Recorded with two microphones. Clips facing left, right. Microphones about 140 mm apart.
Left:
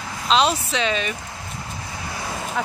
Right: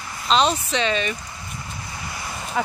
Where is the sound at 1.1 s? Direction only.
90° left.